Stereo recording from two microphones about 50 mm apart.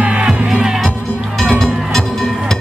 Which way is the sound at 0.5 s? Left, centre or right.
Centre.